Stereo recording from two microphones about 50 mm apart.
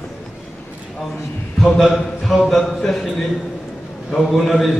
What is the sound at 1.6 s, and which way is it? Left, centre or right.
A man's voice, centre.